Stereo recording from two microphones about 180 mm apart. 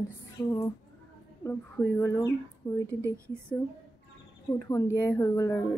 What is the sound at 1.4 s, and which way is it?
Speech, 15° left (ahead or behind).